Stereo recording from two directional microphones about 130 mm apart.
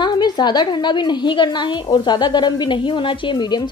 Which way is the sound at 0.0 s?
35° left (ahead or behind).